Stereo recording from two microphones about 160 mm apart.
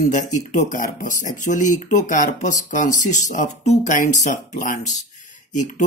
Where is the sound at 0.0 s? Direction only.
50° left (ahead or behind).